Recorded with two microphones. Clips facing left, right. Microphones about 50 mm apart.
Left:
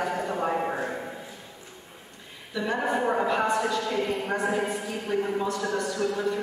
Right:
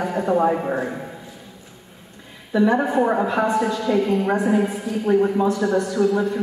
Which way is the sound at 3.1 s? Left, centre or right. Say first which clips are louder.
Right 5 dB; centre.